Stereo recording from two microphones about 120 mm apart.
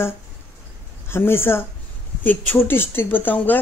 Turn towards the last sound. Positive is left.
turn(degrees=15)  # may be behind; listen again after turning